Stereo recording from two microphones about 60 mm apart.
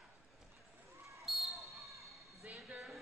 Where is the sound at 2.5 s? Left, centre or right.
Centre.